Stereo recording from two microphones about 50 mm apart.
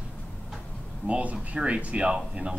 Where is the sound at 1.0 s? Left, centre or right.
Right.